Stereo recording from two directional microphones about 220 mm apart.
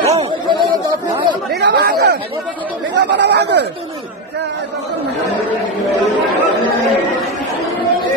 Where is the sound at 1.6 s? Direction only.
45° right (ahead or behind).